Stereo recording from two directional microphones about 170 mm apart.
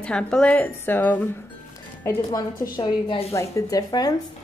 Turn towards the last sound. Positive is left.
turn(degrees=25)  # may be behind; listen again after turning